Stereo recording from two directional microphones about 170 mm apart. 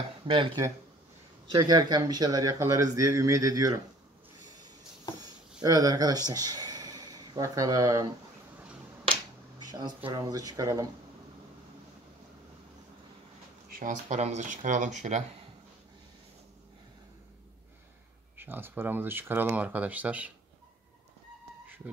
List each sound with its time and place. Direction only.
0.3 s speech: 30° right (ahead or behind)
5.6 s speech: 20° right (ahead or behind)
9.7 s a sound: 25° right (ahead or behind)
10.0 s speech: 20° right (ahead or behind)
13.7 s speech: 55° right (ahead or behind)
18.4 s speech: 10° right (ahead or behind)